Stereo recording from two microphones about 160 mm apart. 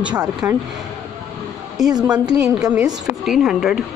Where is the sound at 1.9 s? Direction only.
25° right (ahead or behind).